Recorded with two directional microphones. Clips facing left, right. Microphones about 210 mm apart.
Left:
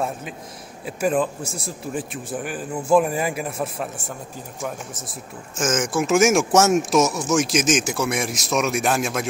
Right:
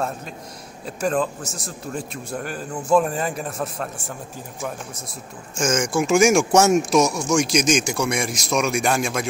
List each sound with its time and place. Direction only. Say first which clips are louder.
0.8 s a man's voice: left 1 dB; 5° left (ahead or behind)